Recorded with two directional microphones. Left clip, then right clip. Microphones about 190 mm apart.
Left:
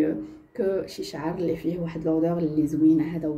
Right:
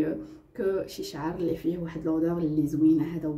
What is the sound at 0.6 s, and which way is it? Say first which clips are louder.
Speech: left 2 dB; 10° left (ahead or behind).